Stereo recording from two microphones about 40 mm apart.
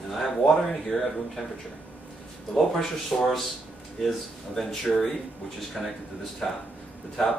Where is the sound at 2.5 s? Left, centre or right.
Centre.